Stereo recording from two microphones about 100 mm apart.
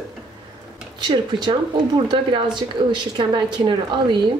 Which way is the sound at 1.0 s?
50° right (ahead or behind).